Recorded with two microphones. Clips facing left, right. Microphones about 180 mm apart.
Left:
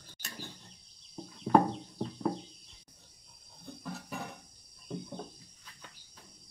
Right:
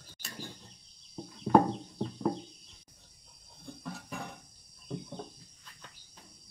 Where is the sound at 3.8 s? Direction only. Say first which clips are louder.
Left 1 dB; centre (ahead or behind).